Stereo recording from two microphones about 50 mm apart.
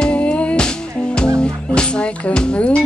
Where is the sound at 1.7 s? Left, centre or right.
Left.